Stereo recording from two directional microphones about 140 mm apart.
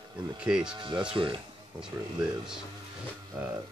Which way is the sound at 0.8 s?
35° right (ahead or behind).